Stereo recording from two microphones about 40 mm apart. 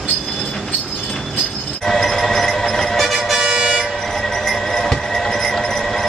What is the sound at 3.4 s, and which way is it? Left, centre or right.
Vehicle, centre.